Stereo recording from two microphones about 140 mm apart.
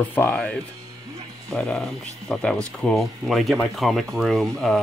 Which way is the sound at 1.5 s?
5° left (ahead or behind).